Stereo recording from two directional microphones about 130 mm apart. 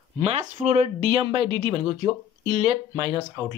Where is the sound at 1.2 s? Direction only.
40° right (ahead or behind).